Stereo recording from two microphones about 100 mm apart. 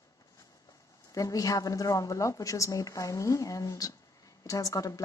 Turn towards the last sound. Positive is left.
turn(degrees=35)  # may be behind; listen again after turning